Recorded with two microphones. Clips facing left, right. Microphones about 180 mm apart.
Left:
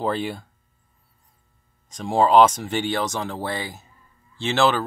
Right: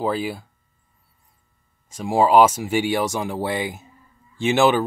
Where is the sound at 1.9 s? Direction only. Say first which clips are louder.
Right 1 dB; 10° right (ahead or behind).